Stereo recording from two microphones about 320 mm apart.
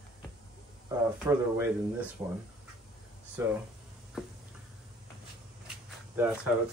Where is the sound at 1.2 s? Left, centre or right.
Centre.